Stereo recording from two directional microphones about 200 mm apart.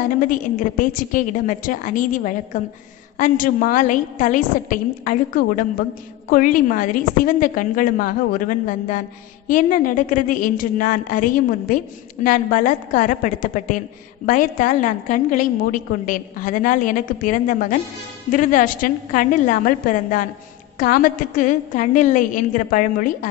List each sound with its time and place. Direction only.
0.3 s a woman's voice: 40° left (ahead or behind)